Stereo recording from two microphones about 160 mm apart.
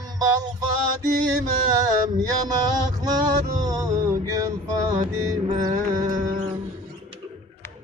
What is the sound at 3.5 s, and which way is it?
Music, 25° right (ahead or behind).